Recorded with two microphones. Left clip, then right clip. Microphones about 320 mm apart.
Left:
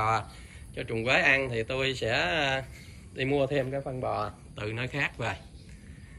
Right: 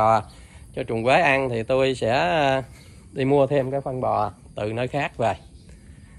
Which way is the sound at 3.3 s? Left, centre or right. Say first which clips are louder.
Right 8 dB; centre.